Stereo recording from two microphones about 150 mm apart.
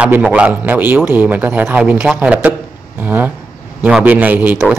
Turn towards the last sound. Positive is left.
turn(degrees=-10)  # may be behind; listen again after turning